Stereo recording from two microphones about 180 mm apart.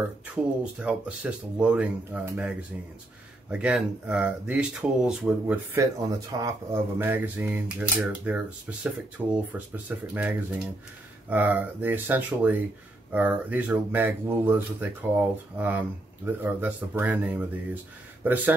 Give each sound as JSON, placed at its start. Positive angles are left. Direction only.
{"t": 0.7, "sound": "speech", "side_deg": -5}
{"t": 5.8, "sound": "speech", "side_deg": -20}